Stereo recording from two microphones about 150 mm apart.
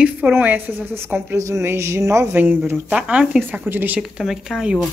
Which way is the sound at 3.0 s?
5° right (ahead or behind).